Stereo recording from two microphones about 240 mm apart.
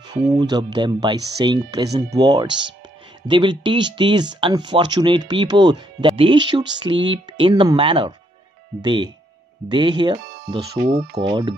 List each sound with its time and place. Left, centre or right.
0.1 s speech: centre